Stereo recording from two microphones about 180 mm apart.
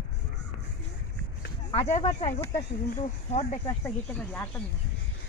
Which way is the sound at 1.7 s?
35° left (ahead or behind).